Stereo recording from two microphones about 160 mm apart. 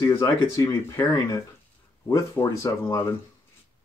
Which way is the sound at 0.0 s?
25° left (ahead or behind).